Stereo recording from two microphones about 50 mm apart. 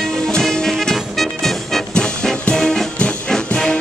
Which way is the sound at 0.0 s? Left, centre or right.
Centre.